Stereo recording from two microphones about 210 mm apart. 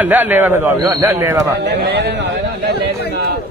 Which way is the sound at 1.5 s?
50° right (ahead or behind).